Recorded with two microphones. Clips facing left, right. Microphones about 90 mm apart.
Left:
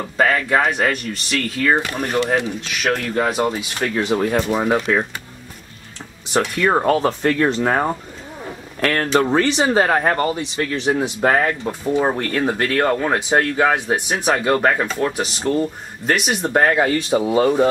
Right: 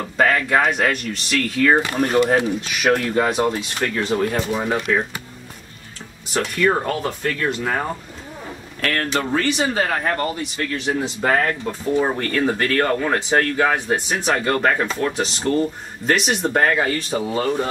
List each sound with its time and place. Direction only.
0.2 s speech: centre (ahead or behind)
3.9 s speech: 15° left (ahead or behind)
4.3 s speech: 25° left (ahead or behind)
6.3 s speech: 20° left (ahead or behind)
8.8 s speech: 25° left (ahead or behind)
10.9 s speech: 15° left (ahead or behind)
16.5 s speech: 15° left (ahead or behind)